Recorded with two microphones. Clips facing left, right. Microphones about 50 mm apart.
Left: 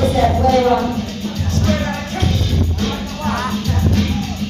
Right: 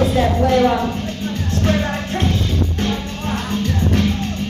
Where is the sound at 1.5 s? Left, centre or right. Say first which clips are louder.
Even; right.